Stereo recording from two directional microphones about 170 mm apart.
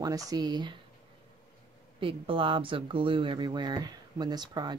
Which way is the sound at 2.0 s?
30° right (ahead or behind).